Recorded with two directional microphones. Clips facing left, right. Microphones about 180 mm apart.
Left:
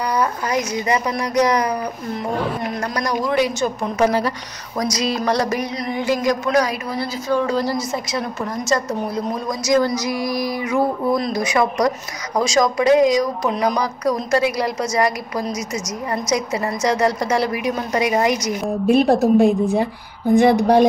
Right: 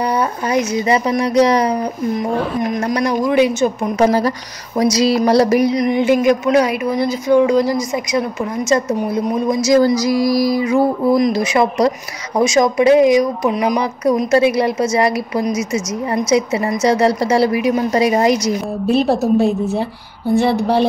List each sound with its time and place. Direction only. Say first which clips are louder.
0.1 s speech: right 3 dB; 25° right (ahead or behind)
2.7 s speech: right 5 dB; 15° right (ahead or behind)
4.0 s a woman's voice: right 4 dB; 40° right (ahead or behind)
5.8 s a woman's voice: right 7 dB; 20° right (ahead or behind)
11.3 s a woman's voice: right 3 dB; 25° right (ahead or behind)
13.5 s speech: right 3 dB; 10° right (ahead or behind)
14.3 s a woman's voice: right 6 dB; 25° right (ahead or behind)
18.9 s speech: even; 15° left (ahead or behind)